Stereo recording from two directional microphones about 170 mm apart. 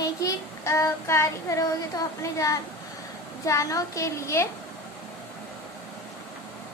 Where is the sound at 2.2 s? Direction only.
20° left (ahead or behind).